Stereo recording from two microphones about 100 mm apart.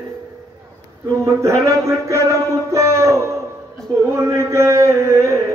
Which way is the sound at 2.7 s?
30° right (ahead or behind).